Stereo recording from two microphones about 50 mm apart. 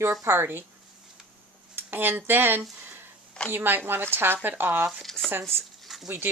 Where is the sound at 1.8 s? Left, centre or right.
Right.